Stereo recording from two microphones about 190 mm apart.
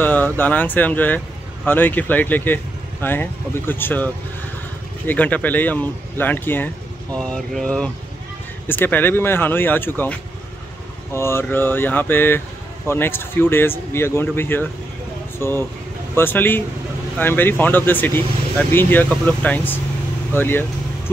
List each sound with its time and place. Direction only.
0.0 s speech: 10° left (ahead or behind)
7.2 s mantra: 5° left (ahead or behind)
8.6 s speech: 10° left (ahead or behind)
11.1 s speech: 15° left (ahead or behind)